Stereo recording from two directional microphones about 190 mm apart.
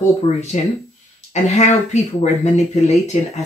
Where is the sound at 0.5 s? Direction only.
40° left (ahead or behind).